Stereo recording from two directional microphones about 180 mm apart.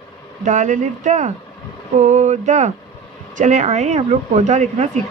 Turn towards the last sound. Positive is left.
turn(degrees=-40)  # may be behind; listen again after turning